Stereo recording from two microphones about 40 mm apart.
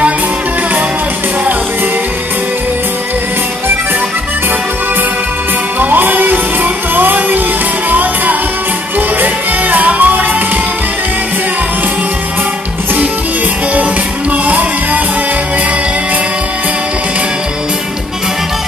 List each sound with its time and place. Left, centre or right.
5.8 s music: right
14.3 s music: right